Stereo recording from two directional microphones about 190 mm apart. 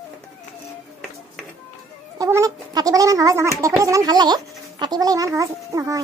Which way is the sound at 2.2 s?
15° right (ahead or behind).